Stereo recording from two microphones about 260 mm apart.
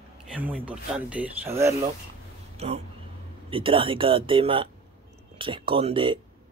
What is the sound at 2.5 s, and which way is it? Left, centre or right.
Speech, right.